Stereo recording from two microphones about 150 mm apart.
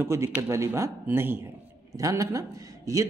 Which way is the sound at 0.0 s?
15° right (ahead or behind).